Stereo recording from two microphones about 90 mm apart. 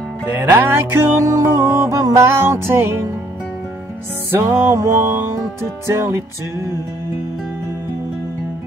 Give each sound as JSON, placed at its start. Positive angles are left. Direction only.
{"t": 0.4, "sound": "music", "side_deg": -25}
{"t": 4.3, "sound": "music", "side_deg": -30}